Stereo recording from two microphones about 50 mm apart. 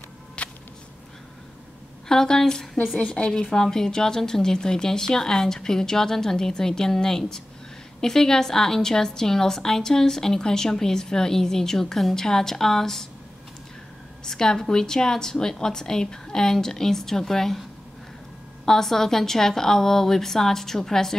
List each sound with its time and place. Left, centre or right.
0.4 s a sound: left
2.0 s a woman's voice: centre
14.2 s a woman's voice: centre
18.7 s a woman's voice: centre